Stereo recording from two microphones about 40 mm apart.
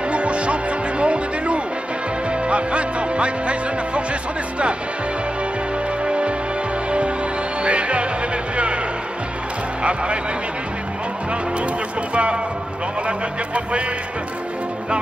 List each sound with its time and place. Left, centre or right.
0.1 s music: right
6.0 s music: right
7.6 s music: right
12.1 s speech: right